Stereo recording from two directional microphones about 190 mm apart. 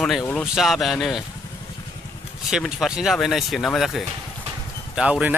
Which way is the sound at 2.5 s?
5° right (ahead or behind).